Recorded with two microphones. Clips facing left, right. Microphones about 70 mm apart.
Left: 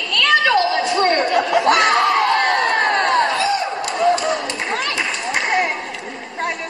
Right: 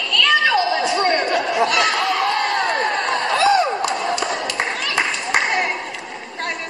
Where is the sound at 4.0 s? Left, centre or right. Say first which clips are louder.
Left 5 dB; centre.